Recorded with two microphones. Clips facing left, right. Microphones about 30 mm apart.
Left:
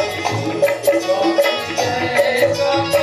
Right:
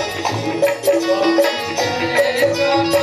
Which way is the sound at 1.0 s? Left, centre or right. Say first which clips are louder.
Even; right.